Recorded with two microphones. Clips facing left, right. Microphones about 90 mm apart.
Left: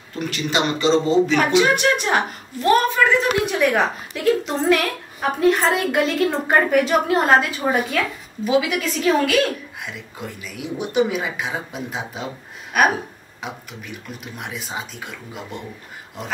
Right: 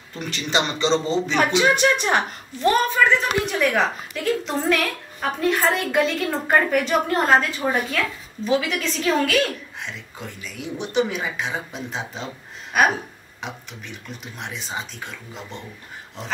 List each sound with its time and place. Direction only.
0.1 s a woman's voice: 5° left (ahead or behind)